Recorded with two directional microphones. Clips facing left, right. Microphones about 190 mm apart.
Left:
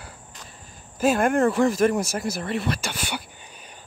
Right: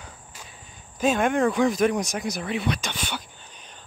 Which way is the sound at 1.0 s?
5° left (ahead or behind).